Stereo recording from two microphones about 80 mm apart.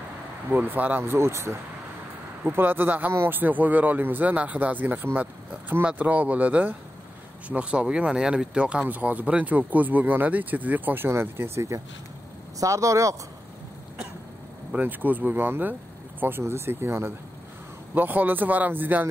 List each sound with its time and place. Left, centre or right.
0.5 s speech: right
11.1 s speech: right
14.8 s speech: right